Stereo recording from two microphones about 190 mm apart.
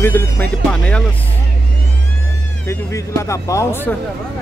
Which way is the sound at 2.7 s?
15° left (ahead or behind).